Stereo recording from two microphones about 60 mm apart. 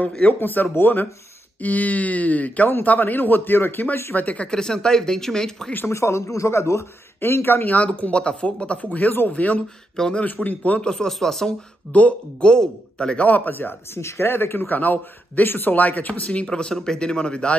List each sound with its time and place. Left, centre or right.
0.3 s speech: left
4.2 s speech: left
4.5 s speech: centre
5.9 s speech: left
7.7 s speech: left
8.9 s speech: left
9.9 s speech: centre
10.2 s speech: left
10.9 s speech: centre
11.9 s speech: left
13.5 s speech: left
13.9 s speech: left
14.8 s speech: left